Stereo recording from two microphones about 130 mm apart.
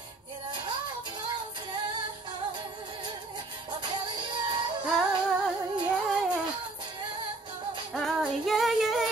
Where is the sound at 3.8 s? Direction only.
35° right (ahead or behind).